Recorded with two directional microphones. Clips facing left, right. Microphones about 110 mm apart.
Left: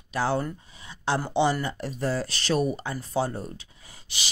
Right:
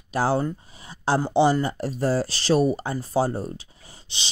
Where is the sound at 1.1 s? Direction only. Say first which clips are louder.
Right 5 dB; 30° right (ahead or behind).